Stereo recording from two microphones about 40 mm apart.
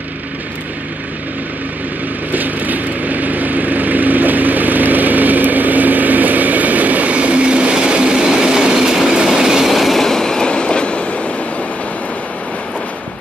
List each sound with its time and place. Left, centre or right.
2.3 s vehicle: right
8.3 s train: centre
9.7 s train: centre
10.0 s train: centre